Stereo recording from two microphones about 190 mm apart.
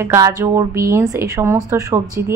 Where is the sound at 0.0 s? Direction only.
15° right (ahead or behind).